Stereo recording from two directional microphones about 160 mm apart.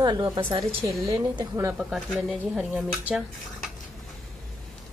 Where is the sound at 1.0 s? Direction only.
25° right (ahead or behind).